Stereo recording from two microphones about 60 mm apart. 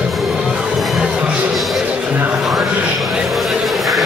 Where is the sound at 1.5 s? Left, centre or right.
Centre.